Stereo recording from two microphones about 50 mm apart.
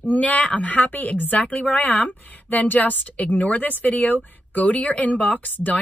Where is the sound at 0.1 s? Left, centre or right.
Left.